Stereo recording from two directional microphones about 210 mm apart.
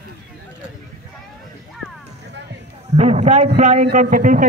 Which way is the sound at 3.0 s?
30° right (ahead or behind).